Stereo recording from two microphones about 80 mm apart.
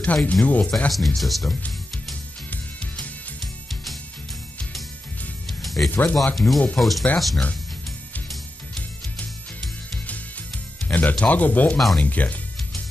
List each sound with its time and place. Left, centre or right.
0.0 s speech: centre
0.8 s speech: centre
2.5 s music: centre
5.5 s music: centre
5.9 s speech: left
6.3 s speech: centre
8.7 s music: centre
10.9 s speech: centre
12.0 s music: centre